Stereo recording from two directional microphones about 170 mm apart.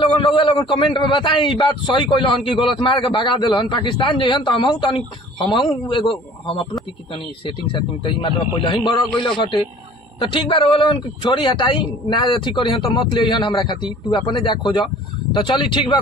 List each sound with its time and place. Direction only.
0.0 s a man's voice: 30° left (ahead or behind)
8.0 s a man's voice: 30° left (ahead or behind)